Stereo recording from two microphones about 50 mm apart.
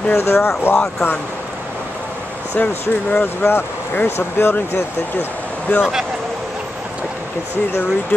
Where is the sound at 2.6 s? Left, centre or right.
Left.